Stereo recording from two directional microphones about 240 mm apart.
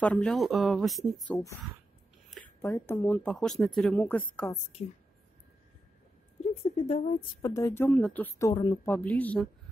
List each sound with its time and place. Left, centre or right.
0.0 s speech: centre
6.5 s a woman's voice: left
7.4 s speech: centre